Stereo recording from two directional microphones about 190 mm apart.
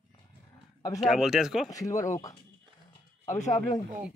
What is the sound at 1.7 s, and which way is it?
Speech, 15° left (ahead or behind).